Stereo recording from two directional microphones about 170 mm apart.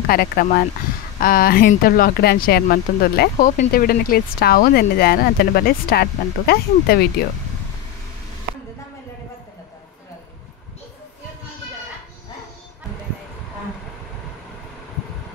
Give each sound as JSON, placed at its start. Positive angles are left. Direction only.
{"t": 0.0, "sound": "speech", "side_deg": 60}